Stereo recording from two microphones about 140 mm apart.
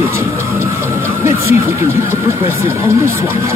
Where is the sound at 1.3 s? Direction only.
15° right (ahead or behind).